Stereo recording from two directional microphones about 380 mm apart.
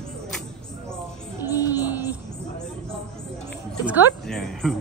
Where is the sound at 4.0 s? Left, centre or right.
Centre.